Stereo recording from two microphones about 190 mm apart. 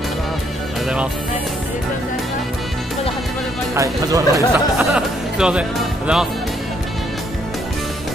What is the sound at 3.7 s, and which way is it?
Speech, 15° right (ahead or behind).